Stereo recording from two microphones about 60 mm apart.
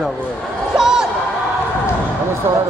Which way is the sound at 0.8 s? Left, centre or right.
Centre.